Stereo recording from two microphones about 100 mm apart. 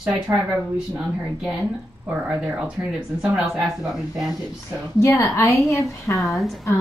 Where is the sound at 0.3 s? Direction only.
25° right (ahead or behind).